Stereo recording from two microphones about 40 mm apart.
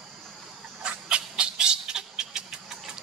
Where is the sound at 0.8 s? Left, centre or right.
Right.